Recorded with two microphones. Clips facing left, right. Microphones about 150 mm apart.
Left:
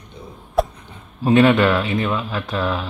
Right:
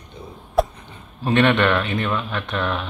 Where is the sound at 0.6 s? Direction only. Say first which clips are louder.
Even; centre (ahead or behind).